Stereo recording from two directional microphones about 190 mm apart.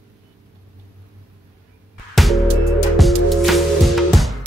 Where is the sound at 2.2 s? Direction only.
Centre (ahead or behind).